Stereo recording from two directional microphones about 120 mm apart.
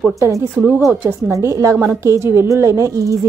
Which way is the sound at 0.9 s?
15° right (ahead or behind).